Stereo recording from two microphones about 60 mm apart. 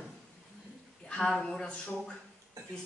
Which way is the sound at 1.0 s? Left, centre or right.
Centre.